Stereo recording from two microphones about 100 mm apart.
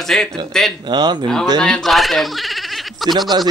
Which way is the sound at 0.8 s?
45° right (ahead or behind).